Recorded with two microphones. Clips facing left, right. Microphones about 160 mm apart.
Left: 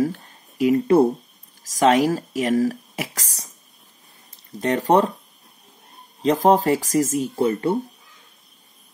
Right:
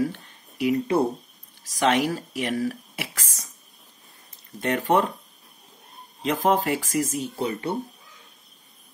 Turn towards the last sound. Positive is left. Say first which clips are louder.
# left 7 dB
turn(degrees=50)  # may be behind; listen again after turning